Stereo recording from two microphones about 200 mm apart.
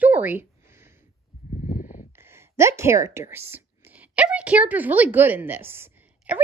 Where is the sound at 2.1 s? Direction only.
10° right (ahead or behind).